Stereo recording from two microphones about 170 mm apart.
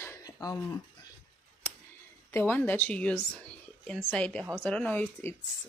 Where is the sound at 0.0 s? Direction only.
20° left (ahead or behind).